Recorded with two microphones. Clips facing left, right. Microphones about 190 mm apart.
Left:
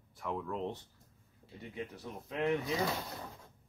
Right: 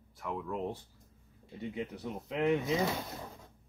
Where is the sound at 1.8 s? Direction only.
20° right (ahead or behind).